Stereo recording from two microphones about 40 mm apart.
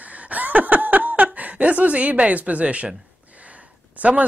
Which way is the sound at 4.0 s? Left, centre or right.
Right.